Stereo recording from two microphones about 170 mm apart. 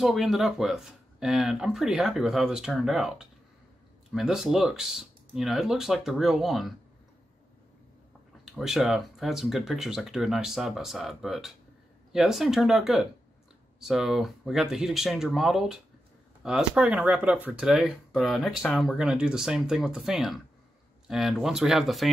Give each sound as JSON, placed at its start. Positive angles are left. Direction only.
{"t": 0.0, "sound": "speech", "side_deg": 0}
{"t": 8.5, "sound": "speech", "side_deg": 0}